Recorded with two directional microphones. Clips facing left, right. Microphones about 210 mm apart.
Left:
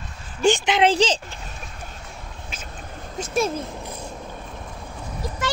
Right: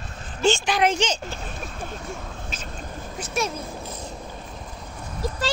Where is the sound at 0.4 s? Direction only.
15° left (ahead or behind); by 1.2 s 30° left (ahead or behind).